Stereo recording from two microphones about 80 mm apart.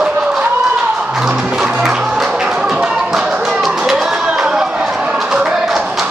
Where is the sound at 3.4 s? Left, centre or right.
Centre.